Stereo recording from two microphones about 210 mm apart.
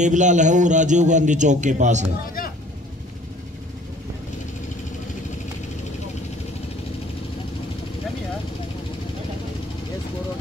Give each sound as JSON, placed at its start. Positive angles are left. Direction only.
{"t": 0.0, "sound": "a man's voice", "side_deg": -35}